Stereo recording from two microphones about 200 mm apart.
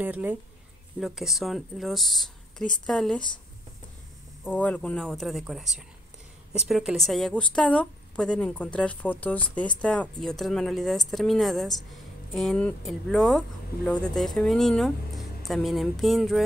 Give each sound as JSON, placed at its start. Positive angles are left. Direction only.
{"t": 0.0, "sound": "speech", "side_deg": -10}
{"t": 4.5, "sound": "speech", "side_deg": 5}